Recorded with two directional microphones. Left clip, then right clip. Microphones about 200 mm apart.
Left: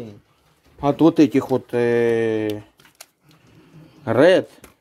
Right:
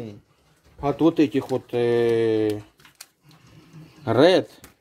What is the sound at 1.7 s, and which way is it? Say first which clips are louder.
Speech: left 1 dB; 20° left (ahead or behind).